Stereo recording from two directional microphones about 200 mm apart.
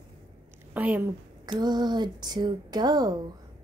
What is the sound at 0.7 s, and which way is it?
Speech, 10° right (ahead or behind).